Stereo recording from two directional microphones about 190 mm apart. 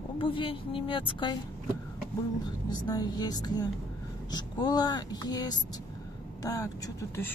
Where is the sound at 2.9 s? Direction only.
20° left (ahead or behind).